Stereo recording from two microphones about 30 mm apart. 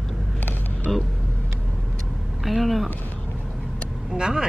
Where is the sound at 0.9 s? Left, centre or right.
Centre.